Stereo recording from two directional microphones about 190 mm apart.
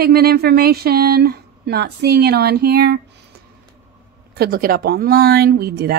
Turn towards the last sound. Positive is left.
turn(degrees=-55)  # may be behind; listen again after turning